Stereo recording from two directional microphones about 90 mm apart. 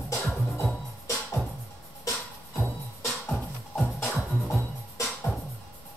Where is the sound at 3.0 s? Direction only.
Centre (ahead or behind).